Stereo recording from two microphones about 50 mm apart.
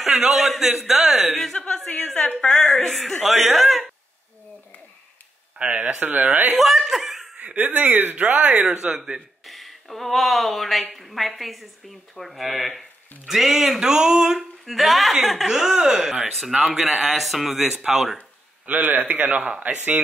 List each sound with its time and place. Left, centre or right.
0.0 s a woman's voice: centre
1.4 s speech: centre
2.5 s a woman's voice: centre
5.6 s speech: right
6.6 s speech: centre
7.3 s speech: right
8.5 s speech: right
9.5 s a sound: centre
10.1 s a woman's voice: centre
14.7 s a woman's voice: centre
18.7 s speech: right